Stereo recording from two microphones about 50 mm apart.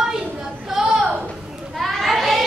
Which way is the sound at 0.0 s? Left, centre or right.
Centre.